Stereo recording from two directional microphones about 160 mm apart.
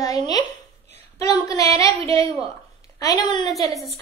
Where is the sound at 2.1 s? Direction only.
35° right (ahead or behind).